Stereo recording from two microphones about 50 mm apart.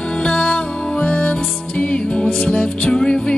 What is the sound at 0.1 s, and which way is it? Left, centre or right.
Music, centre.